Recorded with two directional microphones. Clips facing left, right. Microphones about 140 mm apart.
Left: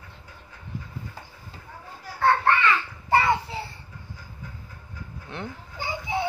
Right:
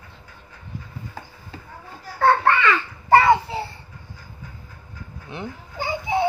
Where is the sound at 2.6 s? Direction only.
80° right.